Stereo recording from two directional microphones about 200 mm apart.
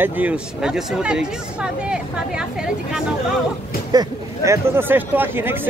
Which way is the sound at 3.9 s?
15° right (ahead or behind).